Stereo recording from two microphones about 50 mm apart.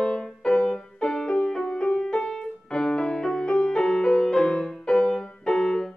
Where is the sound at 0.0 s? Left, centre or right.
Centre.